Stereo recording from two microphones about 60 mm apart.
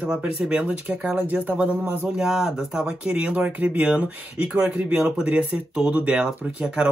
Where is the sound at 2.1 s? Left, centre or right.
Centre.